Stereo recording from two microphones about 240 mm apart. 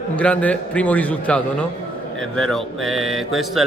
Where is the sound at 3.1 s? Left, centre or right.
Centre.